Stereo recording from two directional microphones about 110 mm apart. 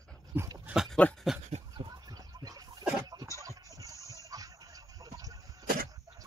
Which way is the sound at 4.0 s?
30° left (ahead or behind).